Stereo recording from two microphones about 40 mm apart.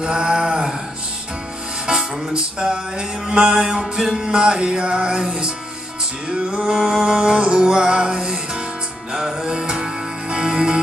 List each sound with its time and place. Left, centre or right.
0.0 s a sound: right
1.9 s music: centre
6.5 s music: right